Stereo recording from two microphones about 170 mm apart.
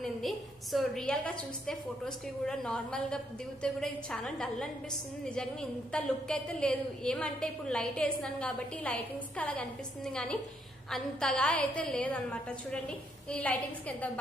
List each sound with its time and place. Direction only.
0.0 s a woman's voice: centre (ahead or behind)